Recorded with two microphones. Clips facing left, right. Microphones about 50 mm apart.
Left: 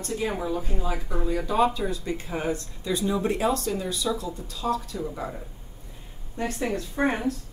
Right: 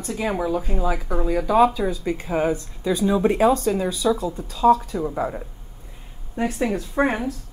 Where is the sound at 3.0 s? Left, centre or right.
Right.